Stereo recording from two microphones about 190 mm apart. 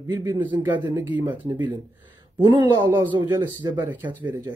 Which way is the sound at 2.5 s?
20° right (ahead or behind).